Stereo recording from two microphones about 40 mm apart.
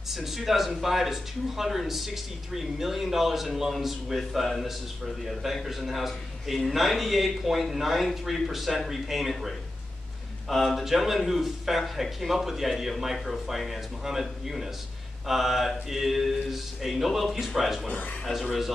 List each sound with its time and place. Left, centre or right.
0.1 s speech: centre
17.8 s speech: left
18.2 s speech: centre